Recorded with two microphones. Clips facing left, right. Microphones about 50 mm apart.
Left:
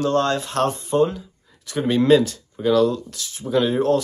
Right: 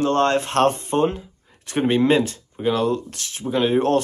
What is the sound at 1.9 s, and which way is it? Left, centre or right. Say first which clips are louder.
Speech: left 5 dB; right.